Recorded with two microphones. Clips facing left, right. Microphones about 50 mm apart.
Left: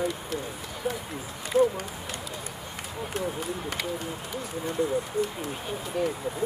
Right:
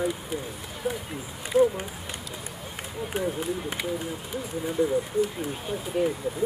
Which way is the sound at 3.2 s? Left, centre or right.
Centre.